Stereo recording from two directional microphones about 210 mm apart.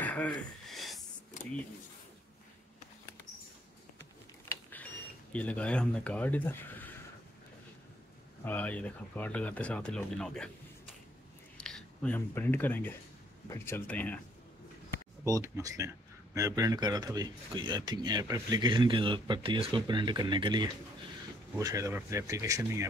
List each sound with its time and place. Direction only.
0.0 s a sound: 5° left (ahead or behind)
1.4 s a sound: 35° left (ahead or behind)
4.5 s mechanisms: 10° left (ahead or behind)
5.3 s speech: 5° left (ahead or behind)
8.5 s speech: 5° left (ahead or behind)
11.6 s speech: 5° left (ahead or behind)
15.2 s a man's voice: 15° right (ahead or behind)